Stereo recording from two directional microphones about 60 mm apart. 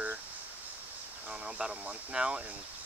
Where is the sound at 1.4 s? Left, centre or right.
Centre.